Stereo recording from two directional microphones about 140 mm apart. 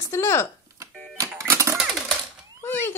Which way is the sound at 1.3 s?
20° right (ahead or behind).